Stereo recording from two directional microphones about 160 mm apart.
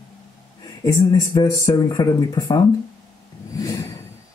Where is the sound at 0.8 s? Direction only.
20° left (ahead or behind).